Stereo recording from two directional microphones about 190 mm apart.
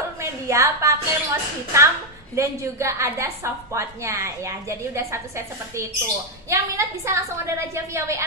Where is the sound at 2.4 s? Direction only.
15° right (ahead or behind).